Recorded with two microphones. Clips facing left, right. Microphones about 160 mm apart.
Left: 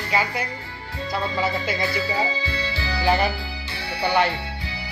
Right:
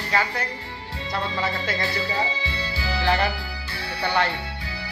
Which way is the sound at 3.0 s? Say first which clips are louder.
Left 2 dB; 10° left (ahead or behind).